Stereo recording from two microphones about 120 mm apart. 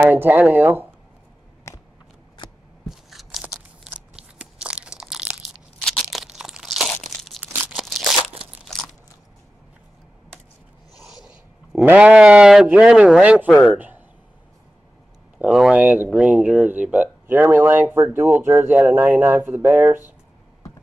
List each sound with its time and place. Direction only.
0.0 s speech: 15° right (ahead or behind)
1.7 s a sound: 25° left (ahead or behind)
2.9 s crunch: centre (ahead or behind)
11.2 s speech: 15° right (ahead or behind)
13.7 s a sound: 15° right (ahead or behind)
15.3 s speech: 5° right (ahead or behind)